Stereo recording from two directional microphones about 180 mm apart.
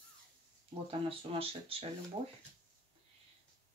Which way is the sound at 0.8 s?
30° right (ahead or behind).